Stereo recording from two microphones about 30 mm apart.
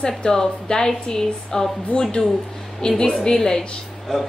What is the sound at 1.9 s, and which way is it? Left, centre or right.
Speech, left.